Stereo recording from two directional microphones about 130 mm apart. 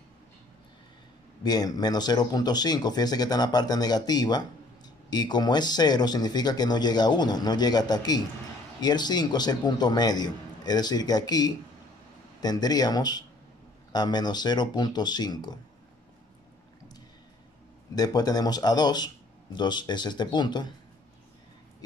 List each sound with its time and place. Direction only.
1.4 s speech: 30° left (ahead or behind)
17.9 s speech: 30° left (ahead or behind)